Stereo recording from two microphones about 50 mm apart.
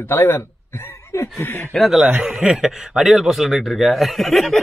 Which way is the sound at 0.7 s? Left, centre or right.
Left.